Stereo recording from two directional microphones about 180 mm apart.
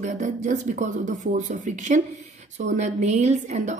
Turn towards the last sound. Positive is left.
turn(degrees=-40)  # may be behind; listen again after turning